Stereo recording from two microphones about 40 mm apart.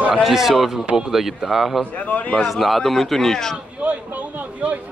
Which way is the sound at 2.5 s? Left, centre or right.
Centre.